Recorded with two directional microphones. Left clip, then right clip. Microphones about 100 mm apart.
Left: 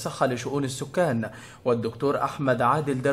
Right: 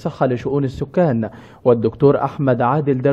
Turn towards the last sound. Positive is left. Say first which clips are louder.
# right 6 dB
turn(degrees=-35)  # may be behind; listen again after turning